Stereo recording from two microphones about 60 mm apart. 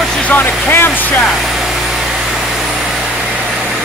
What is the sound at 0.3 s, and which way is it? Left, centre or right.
Vehicle, left.